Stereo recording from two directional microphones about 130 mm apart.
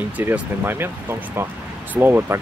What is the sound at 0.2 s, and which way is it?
Speech, 15° right (ahead or behind).